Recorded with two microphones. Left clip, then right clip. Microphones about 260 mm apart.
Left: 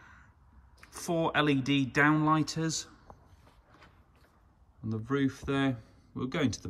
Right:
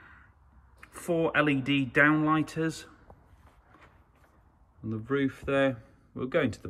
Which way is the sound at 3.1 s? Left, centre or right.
Right.